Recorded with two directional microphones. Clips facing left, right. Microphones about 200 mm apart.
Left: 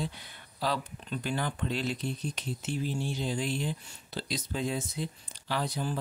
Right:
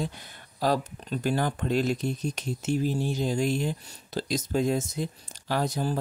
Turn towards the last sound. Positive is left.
turn(degrees=-45)  # may be behind; listen again after turning